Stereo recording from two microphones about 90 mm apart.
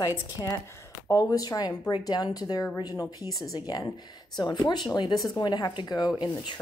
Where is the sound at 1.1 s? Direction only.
40° left (ahead or behind).